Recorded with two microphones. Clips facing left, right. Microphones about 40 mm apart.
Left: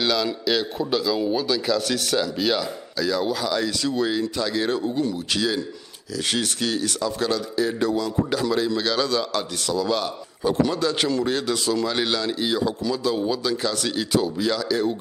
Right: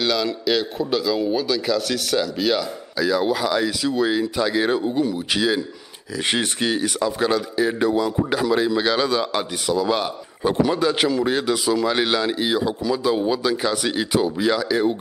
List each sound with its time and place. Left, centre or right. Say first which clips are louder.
0.0 s a man's voice: right 1 dB; centre
3.0 s a man's voice: right 4 dB; centre